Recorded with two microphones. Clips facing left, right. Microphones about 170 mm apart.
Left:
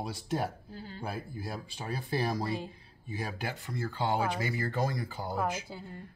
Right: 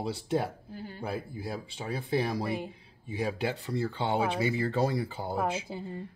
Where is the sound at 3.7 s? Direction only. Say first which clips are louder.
Even; 25° right (ahead or behind).